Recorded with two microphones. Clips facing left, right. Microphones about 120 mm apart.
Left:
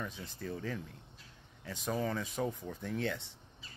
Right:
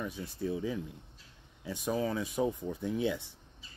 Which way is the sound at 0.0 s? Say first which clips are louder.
Right 6 dB; 10° right (ahead or behind).